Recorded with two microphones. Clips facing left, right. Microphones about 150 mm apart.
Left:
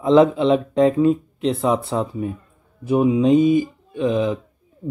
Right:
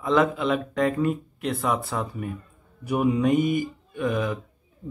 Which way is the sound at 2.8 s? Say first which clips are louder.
Left 6 dB; 20° left (ahead or behind).